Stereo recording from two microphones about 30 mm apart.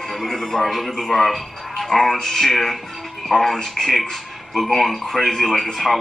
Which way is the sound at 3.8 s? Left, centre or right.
Centre.